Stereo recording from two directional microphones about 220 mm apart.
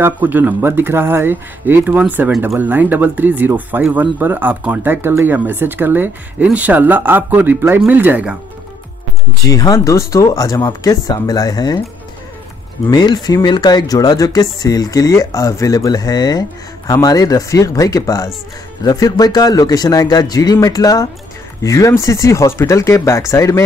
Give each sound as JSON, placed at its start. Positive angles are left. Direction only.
{"t": 0.0, "sound": "speech", "side_deg": -10}
{"t": 9.5, "sound": "speech", "side_deg": 15}
{"t": 12.9, "sound": "speech", "side_deg": 20}